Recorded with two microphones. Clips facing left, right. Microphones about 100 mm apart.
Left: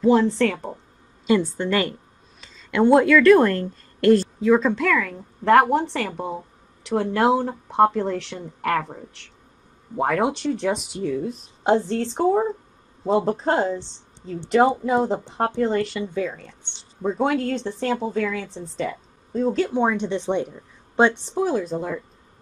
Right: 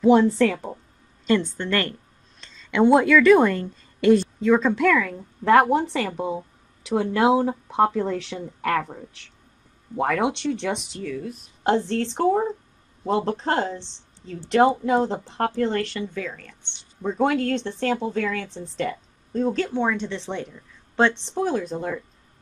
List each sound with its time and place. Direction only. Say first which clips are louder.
0.4 s speech: right 1 dB; 5° right (ahead or behind)
1.2 s a woman's voice: left 2 dB; 10° left (ahead or behind)
11.0 s speech: left 5 dB; 25° left (ahead or behind)
11.9 s speech: left 1 dB; 5° left (ahead or behind)
17.0 s speech: even; 5° left (ahead or behind)